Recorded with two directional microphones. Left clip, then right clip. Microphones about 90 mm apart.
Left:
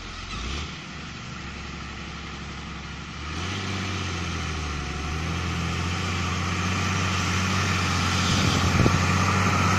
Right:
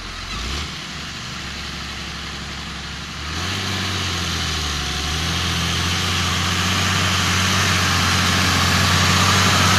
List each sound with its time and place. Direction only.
3.3 s vehicle: 30° right (ahead or behind)